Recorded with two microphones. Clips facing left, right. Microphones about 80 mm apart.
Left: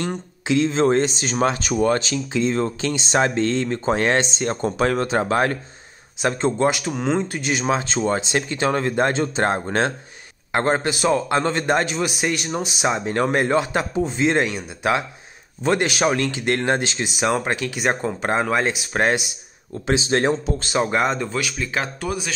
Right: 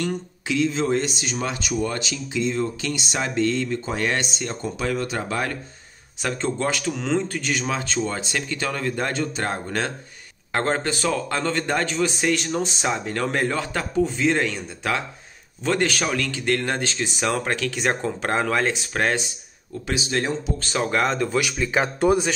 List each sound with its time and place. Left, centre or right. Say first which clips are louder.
0.0 s speech: even; left
4.5 s speech: left 6 dB; left
6.2 s speech: left 5 dB; left
10.5 s speech: left 3 dB; centre
20.1 s speech: left 4 dB; left
20.7 s speech: left 2 dB; centre
21.3 s speech: right 2 dB; centre
22.0 s speech: right 8 dB; right